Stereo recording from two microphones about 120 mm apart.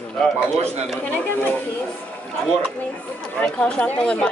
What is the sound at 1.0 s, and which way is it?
Speech, 15° left (ahead or behind).